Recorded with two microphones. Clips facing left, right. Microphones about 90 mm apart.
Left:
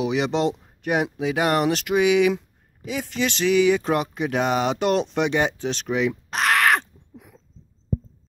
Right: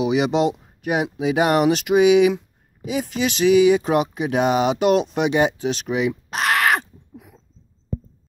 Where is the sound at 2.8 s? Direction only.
10° right (ahead or behind).